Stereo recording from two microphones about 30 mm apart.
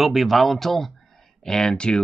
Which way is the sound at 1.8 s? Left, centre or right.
Left.